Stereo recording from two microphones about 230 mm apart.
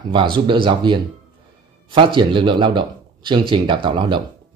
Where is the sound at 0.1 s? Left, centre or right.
Right.